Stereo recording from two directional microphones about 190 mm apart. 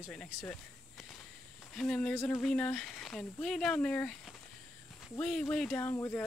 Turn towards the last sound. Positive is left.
turn(degrees=15)  # may be behind; listen again after turning